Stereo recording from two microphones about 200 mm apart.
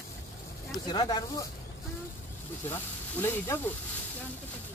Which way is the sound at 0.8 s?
20° left (ahead or behind).